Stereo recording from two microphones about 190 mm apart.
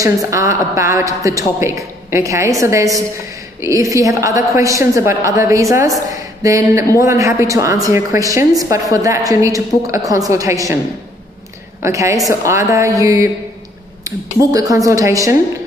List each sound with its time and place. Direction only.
0.0 s a woman's voice: 15° right (ahead or behind)
11.8 s a woman's voice: 15° right (ahead or behind)